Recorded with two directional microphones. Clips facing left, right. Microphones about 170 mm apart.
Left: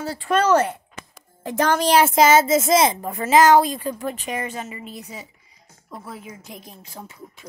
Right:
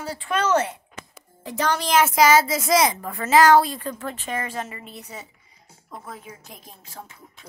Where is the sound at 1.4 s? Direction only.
50° left (ahead or behind); by 4.5 s 15° left (ahead or behind).